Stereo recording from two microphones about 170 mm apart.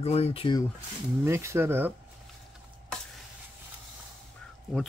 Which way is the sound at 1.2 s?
15° right (ahead or behind).